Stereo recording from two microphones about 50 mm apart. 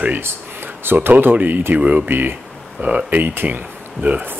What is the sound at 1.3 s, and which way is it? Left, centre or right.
Speech, right.